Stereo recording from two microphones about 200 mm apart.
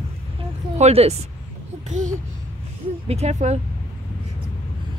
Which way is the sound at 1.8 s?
35° right (ahead or behind).